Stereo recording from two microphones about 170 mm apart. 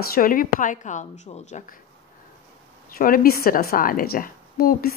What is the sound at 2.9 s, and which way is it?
A woman's voice, 60° left (ahead or behind).